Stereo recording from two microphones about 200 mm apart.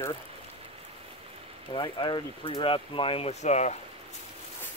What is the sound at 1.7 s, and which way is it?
Speech, 20° left (ahead or behind).